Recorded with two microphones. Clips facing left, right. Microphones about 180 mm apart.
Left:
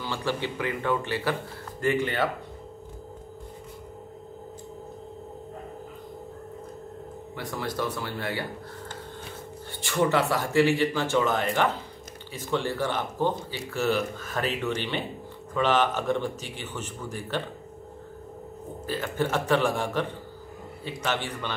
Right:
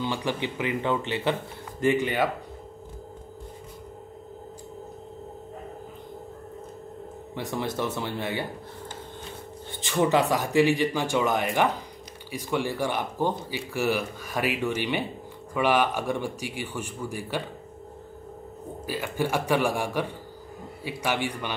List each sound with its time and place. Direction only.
0.0 s speech: 15° right (ahead or behind)
7.3 s speech: 25° right (ahead or behind)
9.7 s speech: 20° right (ahead or behind)
18.9 s speech: 10° right (ahead or behind)